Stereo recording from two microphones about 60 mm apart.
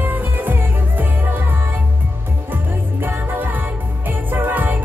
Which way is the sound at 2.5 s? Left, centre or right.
Right.